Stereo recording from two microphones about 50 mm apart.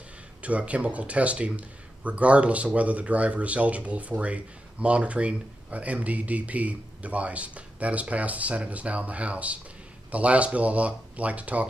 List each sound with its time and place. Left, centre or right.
0.4 s speech: right